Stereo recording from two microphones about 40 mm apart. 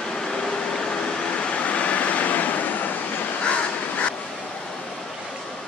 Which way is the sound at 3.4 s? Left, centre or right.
Left.